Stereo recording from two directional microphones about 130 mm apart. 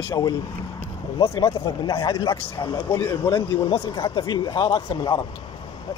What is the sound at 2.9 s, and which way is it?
Speech, 20° left (ahead or behind).